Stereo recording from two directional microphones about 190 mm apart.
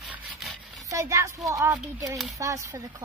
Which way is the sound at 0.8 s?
15° right (ahead or behind).